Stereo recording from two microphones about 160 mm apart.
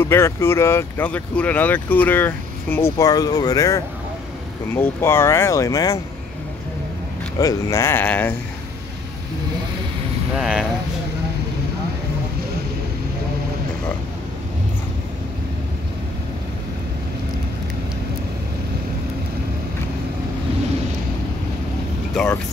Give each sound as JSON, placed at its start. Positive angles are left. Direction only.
{"t": 0.0, "sound": "speech", "side_deg": 15}
{"t": 7.3, "sound": "speech", "side_deg": 20}
{"t": 10.4, "sound": "speech", "side_deg": -5}
{"t": 22.1, "sound": "speech", "side_deg": 5}